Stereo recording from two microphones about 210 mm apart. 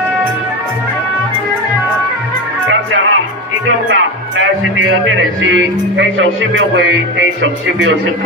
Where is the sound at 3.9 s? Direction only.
60° right (ahead or behind).